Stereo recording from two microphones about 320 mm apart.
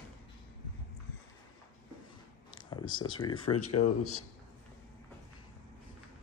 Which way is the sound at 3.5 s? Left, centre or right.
Left.